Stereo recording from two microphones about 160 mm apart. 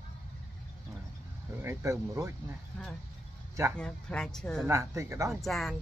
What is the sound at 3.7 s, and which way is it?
Speech, 5° left (ahead or behind).